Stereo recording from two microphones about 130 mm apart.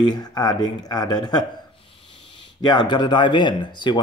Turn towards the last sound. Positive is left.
turn(degrees=35)  # may be behind; listen again after turning